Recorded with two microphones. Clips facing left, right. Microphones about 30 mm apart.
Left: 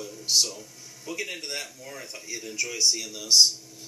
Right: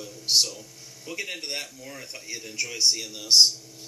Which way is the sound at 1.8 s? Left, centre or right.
Centre.